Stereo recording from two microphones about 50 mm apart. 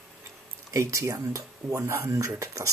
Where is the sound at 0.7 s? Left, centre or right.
Right.